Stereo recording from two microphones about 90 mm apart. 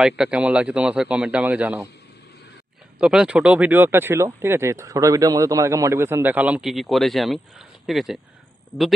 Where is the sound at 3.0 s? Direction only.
10° right (ahead or behind).